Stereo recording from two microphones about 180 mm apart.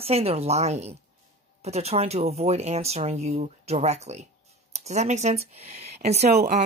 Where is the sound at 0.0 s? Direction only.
35° right (ahead or behind).